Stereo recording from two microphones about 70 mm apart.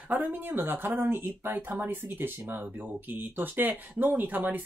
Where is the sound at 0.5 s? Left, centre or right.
Right.